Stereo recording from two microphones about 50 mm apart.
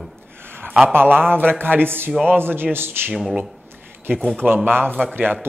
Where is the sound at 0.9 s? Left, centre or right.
Right.